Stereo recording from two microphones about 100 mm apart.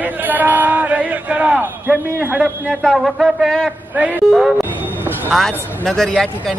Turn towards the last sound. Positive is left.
turn(degrees=5)  # may be behind; listen again after turning